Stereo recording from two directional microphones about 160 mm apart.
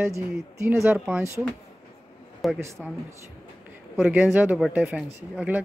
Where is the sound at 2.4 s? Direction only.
Centre (ahead or behind).